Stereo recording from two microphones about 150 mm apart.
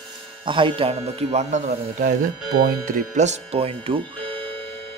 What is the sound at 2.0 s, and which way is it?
Speech, 70° right (ahead or behind).